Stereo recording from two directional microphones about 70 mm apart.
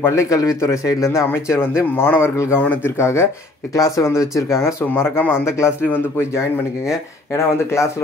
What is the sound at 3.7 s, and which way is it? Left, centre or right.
A man's voice, left.